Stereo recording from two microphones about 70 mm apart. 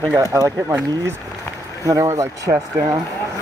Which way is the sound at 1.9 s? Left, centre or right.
Right.